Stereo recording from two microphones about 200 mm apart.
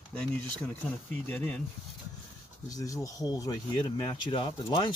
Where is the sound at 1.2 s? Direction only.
5° left (ahead or behind).